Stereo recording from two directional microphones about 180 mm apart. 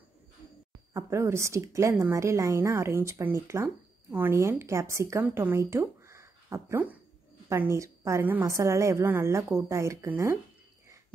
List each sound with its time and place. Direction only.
0.9 s a woman's voice: 15° right (ahead or behind)